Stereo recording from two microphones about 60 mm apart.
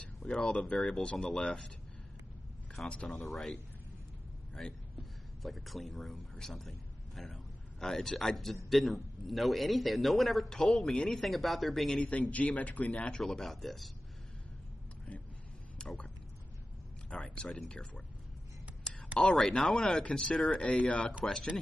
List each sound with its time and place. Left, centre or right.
0.2 s speech: centre
3.1 s a man's voice: centre
4.6 s a man's voice: centre
12.0 s speech: left
13.1 s a man's voice: centre
15.8 s a sound: centre
17.1 s speech: centre
19.1 s speech: centre